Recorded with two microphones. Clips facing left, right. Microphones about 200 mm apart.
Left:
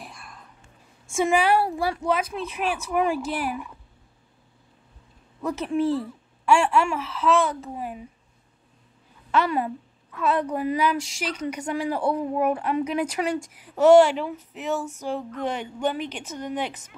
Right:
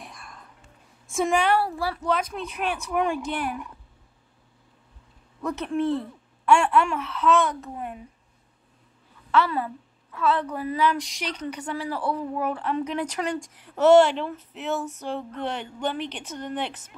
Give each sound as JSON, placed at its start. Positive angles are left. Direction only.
{"t": 0.0, "sound": "whispering", "side_deg": 0}
{"t": 1.0, "sound": "speech", "side_deg": 0}
{"t": 5.4, "sound": "speech", "side_deg": 5}
{"t": 9.3, "sound": "speech", "side_deg": 15}
{"t": 11.0, "sound": "speech", "side_deg": 5}